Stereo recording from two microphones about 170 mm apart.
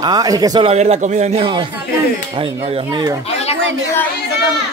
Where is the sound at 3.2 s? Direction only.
35° left (ahead or behind).